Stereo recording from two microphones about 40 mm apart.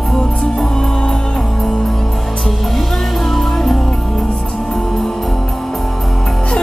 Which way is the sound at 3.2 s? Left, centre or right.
Centre.